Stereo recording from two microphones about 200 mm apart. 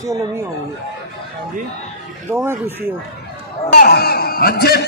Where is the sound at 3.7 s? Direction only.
50° left (ahead or behind).